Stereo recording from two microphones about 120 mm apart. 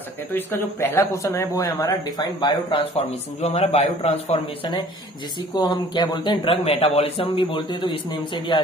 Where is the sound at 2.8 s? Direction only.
60° left (ahead or behind).